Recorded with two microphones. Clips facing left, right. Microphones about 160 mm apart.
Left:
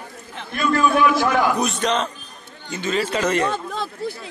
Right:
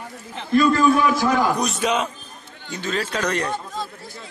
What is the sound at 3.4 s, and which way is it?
Speech, 85° left.